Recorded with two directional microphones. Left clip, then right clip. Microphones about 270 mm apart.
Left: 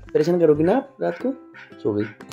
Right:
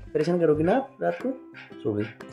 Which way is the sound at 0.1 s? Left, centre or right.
Centre.